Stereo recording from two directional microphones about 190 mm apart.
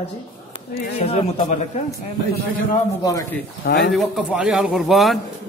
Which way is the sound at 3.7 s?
60° left (ahead or behind).